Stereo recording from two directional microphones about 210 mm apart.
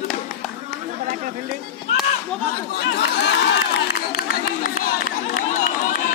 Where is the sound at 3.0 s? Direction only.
55° left (ahead or behind).